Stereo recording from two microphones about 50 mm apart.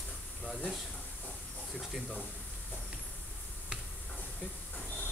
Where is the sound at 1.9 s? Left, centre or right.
Centre.